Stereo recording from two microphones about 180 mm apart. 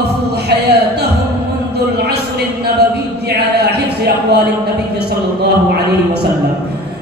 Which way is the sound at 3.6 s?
65° right (ahead or behind).